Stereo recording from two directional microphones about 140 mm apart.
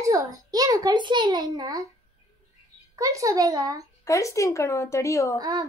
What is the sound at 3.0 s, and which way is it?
Speech, 25° right (ahead or behind).